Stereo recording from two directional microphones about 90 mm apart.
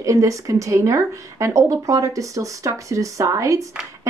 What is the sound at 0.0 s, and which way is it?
Speech, 35° right (ahead or behind).